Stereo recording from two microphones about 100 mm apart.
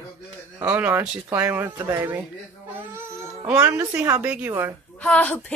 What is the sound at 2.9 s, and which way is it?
Babbling, 25° right (ahead or behind).